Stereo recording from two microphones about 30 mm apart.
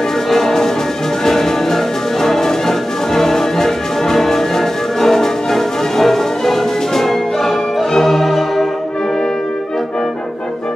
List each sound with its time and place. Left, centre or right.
0.3 s music: centre